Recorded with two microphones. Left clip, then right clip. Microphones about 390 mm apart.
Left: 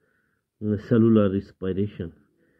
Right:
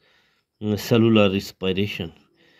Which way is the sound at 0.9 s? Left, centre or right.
Right.